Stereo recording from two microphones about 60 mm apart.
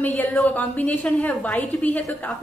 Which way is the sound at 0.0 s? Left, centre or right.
Left.